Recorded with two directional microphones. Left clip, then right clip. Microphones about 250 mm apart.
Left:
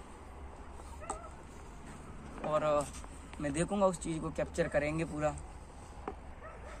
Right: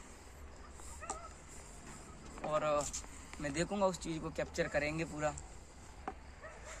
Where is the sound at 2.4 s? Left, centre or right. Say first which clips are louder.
Left 3 dB; centre.